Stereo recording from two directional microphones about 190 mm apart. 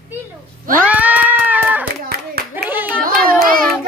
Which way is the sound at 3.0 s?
50° right (ahead or behind).